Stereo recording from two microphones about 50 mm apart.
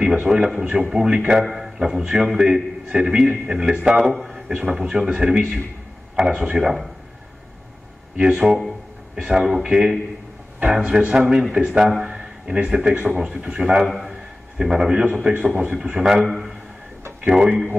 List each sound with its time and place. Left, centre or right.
0.0 s a man's voice: right
8.2 s a man's voice: centre